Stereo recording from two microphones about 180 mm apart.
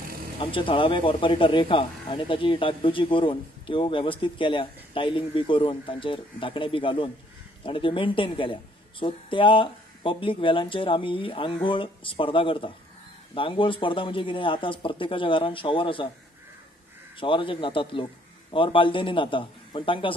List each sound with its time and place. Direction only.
0.4 s speech: 30° left (ahead or behind)
17.2 s speech: 30° left (ahead or behind)